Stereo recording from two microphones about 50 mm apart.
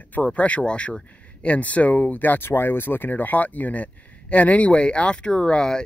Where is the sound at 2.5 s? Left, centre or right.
Left.